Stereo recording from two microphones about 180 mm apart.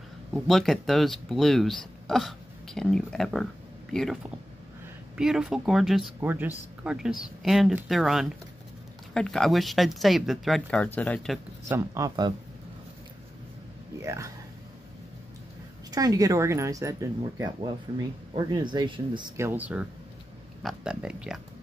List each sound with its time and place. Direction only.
0.3 s speech: centre (ahead or behind)
11.7 s speech: 15° right (ahead or behind)
14.0 s speech: 15° right (ahead or behind)
15.9 s speech: 20° right (ahead or behind)
19.3 s speech: 10° right (ahead or behind)